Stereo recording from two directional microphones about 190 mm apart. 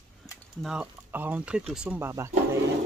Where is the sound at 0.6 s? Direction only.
5° right (ahead or behind).